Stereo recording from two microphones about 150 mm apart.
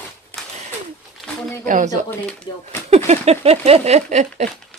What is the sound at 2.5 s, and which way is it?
Speech, 30° left (ahead or behind).